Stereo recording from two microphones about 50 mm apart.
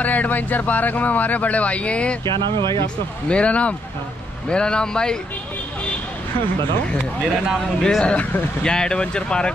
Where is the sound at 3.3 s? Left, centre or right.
Left.